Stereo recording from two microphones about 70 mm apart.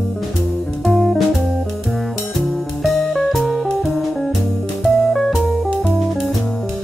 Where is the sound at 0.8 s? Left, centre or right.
Centre.